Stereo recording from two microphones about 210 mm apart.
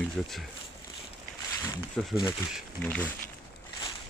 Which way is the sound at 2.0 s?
Centre (ahead or behind).